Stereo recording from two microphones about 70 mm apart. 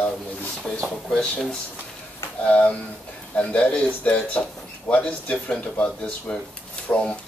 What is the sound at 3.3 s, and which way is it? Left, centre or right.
Speech, centre.